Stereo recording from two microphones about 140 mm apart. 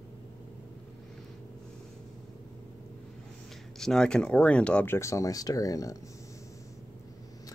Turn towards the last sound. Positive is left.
turn(degrees=25)  # may be behind; listen again after turning